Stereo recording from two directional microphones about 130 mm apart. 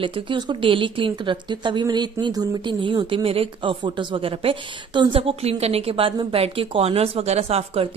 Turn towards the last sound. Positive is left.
turn(degrees=-50)  # may be behind; listen again after turning